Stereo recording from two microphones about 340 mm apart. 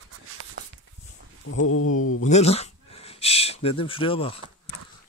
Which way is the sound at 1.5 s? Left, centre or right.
Left.